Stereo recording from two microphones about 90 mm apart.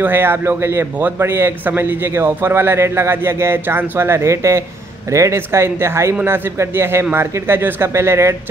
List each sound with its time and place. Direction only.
0.0 s a man's voice: 25° right (ahead or behind)